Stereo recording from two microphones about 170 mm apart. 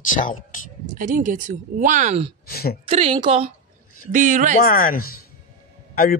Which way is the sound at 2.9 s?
35° right (ahead or behind).